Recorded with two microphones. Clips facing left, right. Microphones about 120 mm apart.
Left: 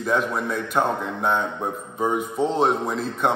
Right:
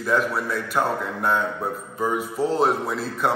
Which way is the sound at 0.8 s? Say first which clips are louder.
Left 1 dB; 25° left (ahead or behind).